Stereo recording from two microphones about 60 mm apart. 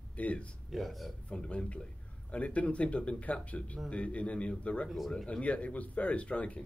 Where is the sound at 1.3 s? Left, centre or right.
Centre.